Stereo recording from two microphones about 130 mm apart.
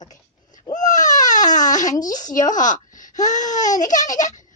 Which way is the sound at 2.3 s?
75° left (ahead or behind).